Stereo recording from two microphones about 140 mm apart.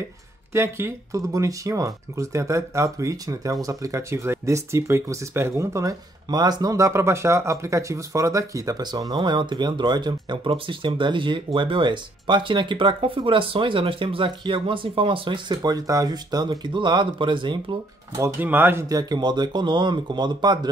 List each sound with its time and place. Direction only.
0.5 s speech: 20° right (ahead or behind); by 18.2 s 35° right (ahead or behind)
18.2 s speech: 15° right (ahead or behind)
18.9 s speech: 30° right (ahead or behind)